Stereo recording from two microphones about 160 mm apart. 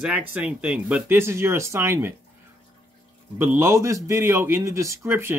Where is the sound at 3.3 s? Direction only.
15° right (ahead or behind).